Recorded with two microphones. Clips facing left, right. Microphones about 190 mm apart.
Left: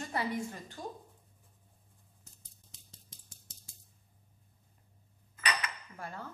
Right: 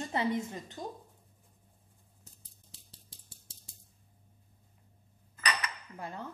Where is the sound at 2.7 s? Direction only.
30° right (ahead or behind).